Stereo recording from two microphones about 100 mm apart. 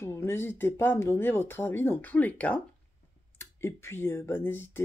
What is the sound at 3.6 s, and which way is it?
Speech, 25° left (ahead or behind).